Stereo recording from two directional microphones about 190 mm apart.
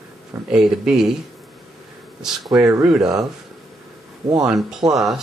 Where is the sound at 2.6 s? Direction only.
15° right (ahead or behind).